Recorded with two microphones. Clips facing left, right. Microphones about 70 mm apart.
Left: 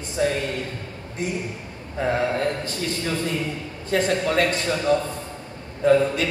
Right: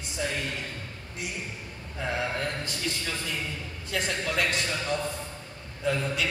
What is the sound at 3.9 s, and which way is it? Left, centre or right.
A man's voice, left.